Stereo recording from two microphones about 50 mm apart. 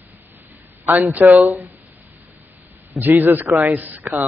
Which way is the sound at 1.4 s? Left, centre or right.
Right.